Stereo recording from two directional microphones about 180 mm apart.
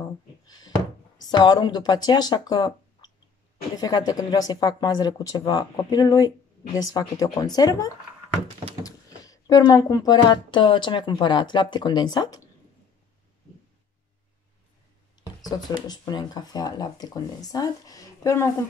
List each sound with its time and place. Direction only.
0.5 s speech: 20° left (ahead or behind)
15.5 s speech: 25° left (ahead or behind)